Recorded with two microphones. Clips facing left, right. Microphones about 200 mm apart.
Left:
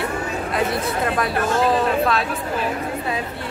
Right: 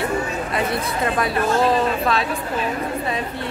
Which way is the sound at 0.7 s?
Centre (ahead or behind).